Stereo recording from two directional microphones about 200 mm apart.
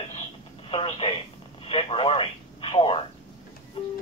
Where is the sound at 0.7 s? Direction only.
25° left (ahead or behind).